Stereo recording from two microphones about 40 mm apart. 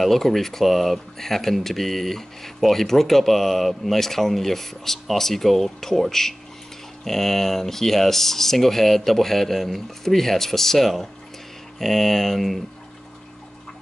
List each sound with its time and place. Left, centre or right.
0.0 s speech: centre